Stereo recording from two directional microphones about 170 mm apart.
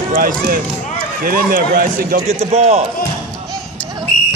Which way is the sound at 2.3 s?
40° right (ahead or behind).